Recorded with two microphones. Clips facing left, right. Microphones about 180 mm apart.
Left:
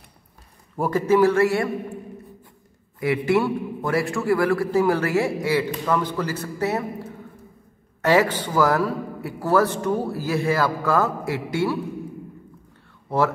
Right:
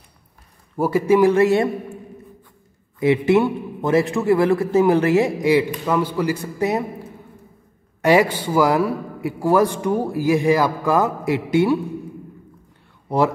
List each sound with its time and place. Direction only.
0.7 s a man's voice: 10° right (ahead or behind)
3.0 s a man's voice: 20° right (ahead or behind)
8.0 s a man's voice: 15° right (ahead or behind)
13.1 s speech: 15° right (ahead or behind)